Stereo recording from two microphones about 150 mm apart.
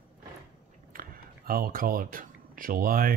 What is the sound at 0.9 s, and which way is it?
Speech, 75° right (ahead or behind).